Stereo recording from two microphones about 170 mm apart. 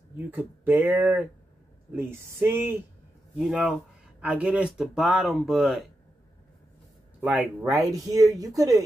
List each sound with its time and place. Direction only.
0.3 s speech: 10° right (ahead or behind)
3.3 s speech: centre (ahead or behind)
7.2 s speech: 5° right (ahead or behind)
7.6 s speech: 20° right (ahead or behind)